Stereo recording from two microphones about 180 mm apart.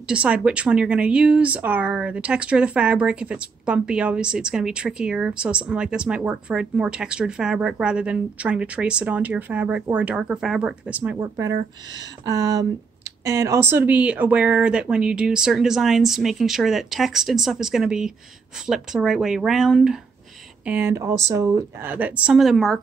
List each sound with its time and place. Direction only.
0.1 s a woman's voice: 5° right (ahead or behind)